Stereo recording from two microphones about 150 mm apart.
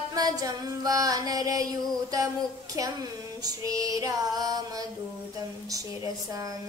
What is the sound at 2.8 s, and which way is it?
Female singing, 25° right (ahead or behind).